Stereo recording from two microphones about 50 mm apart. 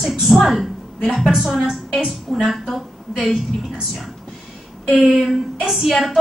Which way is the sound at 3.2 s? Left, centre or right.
Centre.